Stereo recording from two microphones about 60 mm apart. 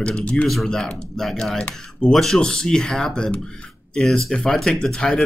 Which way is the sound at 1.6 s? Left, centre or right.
Centre.